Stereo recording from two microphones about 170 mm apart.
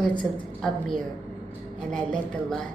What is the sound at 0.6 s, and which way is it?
Speech, 5° left (ahead or behind).